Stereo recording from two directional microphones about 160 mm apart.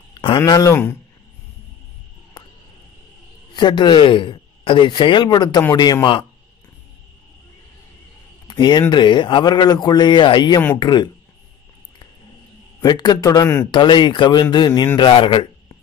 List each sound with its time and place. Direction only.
0.1 s a sound: 30° left (ahead or behind)
0.4 s speech: 20° left (ahead or behind)
2.4 s a sound: 25° left (ahead or behind)
3.5 s speech: 25° left (ahead or behind)
8.5 s speech: 25° left (ahead or behind)
12.8 s speech: 25° left (ahead or behind)